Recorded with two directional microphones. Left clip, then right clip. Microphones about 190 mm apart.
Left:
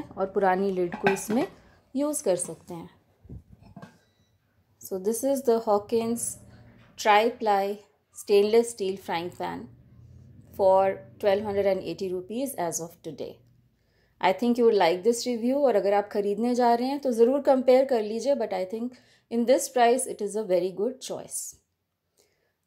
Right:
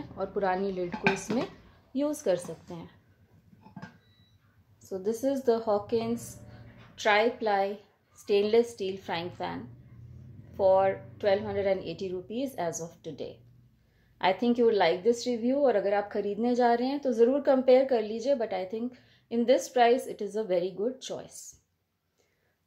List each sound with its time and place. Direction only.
0.1 s a woman's voice: 40° left (ahead or behind)
4.8 s a woman's voice: 35° left (ahead or behind)